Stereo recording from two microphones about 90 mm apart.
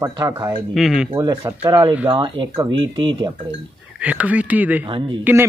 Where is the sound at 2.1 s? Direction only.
65° right (ahead or behind).